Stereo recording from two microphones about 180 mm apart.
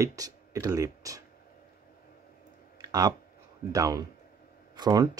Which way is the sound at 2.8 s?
20° right (ahead or behind).